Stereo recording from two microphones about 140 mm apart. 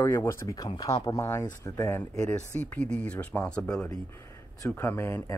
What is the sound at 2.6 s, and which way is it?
Speech, 10° left (ahead or behind).